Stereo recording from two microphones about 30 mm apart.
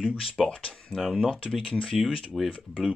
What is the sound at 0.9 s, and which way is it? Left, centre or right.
Speech, left.